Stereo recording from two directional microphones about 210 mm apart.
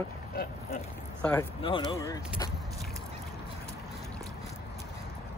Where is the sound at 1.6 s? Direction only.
25° left (ahead or behind).